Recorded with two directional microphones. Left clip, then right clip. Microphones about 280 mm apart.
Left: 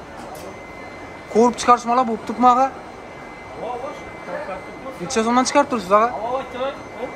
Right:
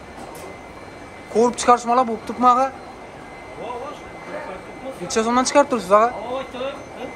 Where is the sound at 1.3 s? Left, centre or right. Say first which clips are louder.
Left 1 dB; centre.